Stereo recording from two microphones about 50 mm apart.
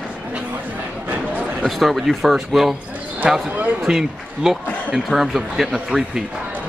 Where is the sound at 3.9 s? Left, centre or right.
Centre.